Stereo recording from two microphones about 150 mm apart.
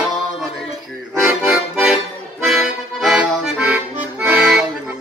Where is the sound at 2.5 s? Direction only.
Centre (ahead or behind).